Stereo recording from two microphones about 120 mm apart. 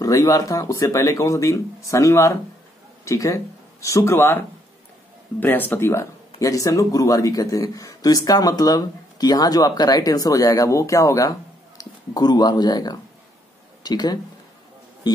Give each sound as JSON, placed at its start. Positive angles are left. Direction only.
{"t": 0.0, "sound": "speech", "side_deg": 30}
{"t": 5.4, "sound": "speech", "side_deg": 15}